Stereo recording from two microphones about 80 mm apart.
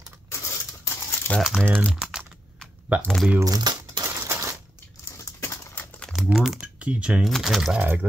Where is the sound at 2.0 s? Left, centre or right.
Centre.